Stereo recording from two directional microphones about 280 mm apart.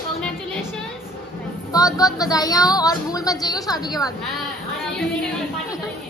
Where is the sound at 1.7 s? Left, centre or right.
Centre.